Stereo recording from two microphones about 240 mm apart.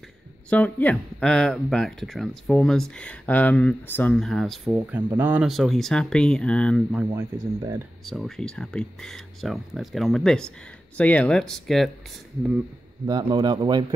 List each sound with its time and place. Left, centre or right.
0.5 s speech: centre
8.0 s speech: centre
13.0 s speech: centre